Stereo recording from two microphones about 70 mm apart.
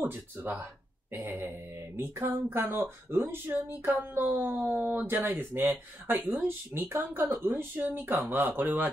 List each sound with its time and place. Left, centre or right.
0.0 s speech: right